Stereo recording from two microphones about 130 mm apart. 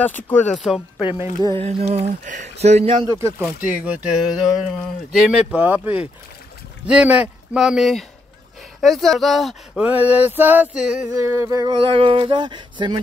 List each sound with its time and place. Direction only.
0.0 s speech: 15° left (ahead or behind)
0.7 s speech: centre (ahead or behind)
1.6 s speech: 55° right (ahead or behind)
3.1 s speech: 20° right (ahead or behind); by 9.8 s centre (ahead or behind)
9.8 s speech: 10° right (ahead or behind)
11.1 s a sound: 25° right (ahead or behind)
11.7 s speech: 40° right (ahead or behind)